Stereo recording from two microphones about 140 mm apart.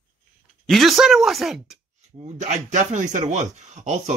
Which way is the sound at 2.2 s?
60° right (ahead or behind).